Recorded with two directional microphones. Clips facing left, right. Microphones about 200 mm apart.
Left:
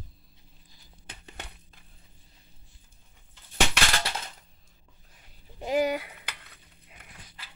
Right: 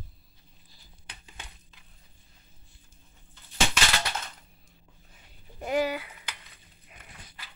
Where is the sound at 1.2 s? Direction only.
65° left (ahead or behind).